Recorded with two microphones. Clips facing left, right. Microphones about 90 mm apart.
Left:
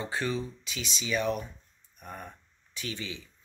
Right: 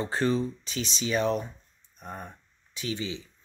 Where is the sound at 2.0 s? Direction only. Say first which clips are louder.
Right 3 dB; 20° right (ahead or behind).